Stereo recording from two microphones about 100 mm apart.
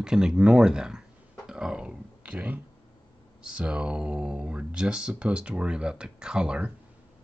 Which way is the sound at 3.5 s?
10° right (ahead or behind).